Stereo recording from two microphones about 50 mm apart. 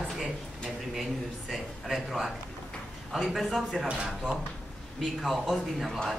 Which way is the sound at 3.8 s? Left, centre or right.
Right.